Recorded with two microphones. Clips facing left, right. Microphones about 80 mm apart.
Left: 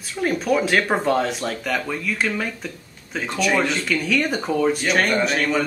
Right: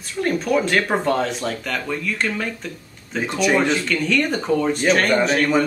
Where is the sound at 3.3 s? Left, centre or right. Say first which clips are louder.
Right 2 dB; centre.